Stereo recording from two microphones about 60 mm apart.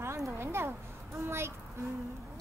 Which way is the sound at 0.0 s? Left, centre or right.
Right.